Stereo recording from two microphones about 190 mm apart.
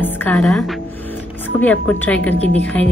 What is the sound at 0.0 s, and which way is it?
A woman's voice, 10° left (ahead or behind).